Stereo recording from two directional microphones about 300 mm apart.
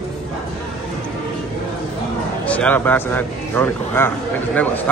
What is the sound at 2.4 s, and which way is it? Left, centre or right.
A man's voice, centre.